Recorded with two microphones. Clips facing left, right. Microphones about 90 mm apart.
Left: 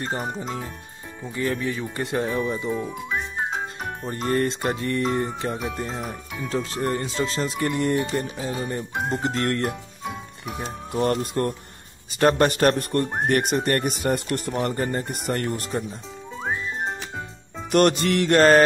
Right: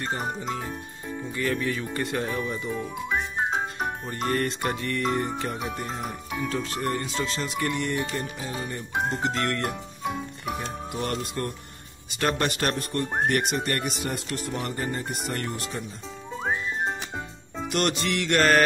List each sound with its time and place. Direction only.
0.0 s music: 30° left (ahead or behind)
4.0 s music: 30° left (ahead or behind)
7.2 s speech: 35° left (ahead or behind)
10.0 s music: centre (ahead or behind)
10.9 s speech: 40° left (ahead or behind)
16.3 s whistling: centre (ahead or behind)
17.6 s speech: 45° left (ahead or behind); by 18.6 s 30° left (ahead or behind)